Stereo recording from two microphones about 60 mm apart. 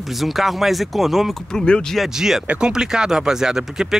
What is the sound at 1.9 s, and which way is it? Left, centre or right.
Speech, centre.